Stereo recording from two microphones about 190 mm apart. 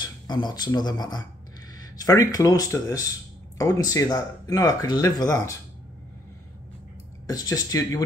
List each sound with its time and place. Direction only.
0.0 s speech: 25° left (ahead or behind)
7.2 s speech: 20° left (ahead or behind)